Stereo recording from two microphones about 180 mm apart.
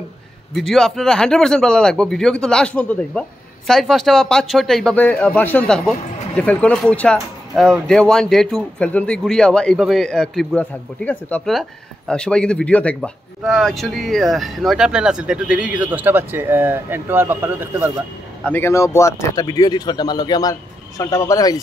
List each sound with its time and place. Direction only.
0.6 s speech: centre (ahead or behind)
18.5 s speech: 15° left (ahead or behind)